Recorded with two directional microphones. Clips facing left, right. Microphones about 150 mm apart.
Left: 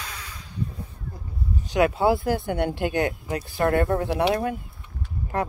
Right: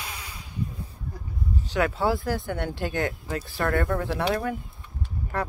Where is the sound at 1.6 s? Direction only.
15° left (ahead or behind).